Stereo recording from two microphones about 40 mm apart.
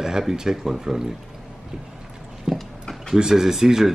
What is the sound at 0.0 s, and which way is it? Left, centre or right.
Speech, centre.